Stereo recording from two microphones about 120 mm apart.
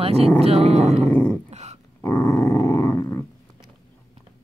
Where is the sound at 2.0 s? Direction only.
25° left (ahead or behind).